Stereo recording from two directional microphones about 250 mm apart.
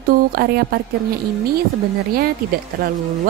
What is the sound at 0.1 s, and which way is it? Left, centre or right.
Speech, right.